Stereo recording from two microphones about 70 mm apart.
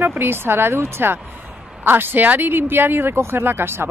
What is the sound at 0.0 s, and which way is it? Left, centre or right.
Speech, right.